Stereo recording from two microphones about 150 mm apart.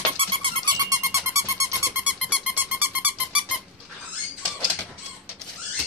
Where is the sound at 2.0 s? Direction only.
5° right (ahead or behind).